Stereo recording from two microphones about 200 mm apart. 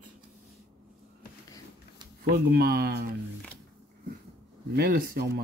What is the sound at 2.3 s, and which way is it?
Speech, 50° right (ahead or behind).